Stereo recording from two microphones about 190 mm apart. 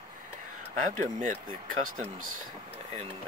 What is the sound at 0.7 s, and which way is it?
Speech, 45° right (ahead or behind).